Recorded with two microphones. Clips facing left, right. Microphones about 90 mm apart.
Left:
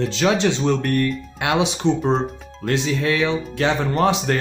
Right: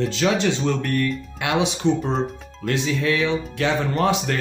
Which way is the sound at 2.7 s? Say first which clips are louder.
Left 1 dB; 35° left (ahead or behind).